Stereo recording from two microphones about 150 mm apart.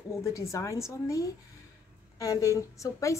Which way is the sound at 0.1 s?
20° left (ahead or behind).